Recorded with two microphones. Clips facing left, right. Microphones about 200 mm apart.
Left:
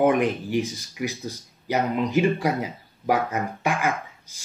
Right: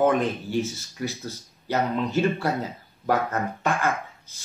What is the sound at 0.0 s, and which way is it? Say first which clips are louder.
Speech: left 2 dB; 15° left (ahead or behind).